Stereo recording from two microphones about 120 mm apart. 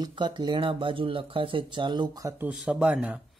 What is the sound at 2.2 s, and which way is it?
Speech, 15° right (ahead or behind).